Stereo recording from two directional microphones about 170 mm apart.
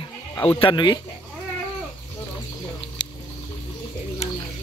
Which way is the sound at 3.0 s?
25° left (ahead or behind).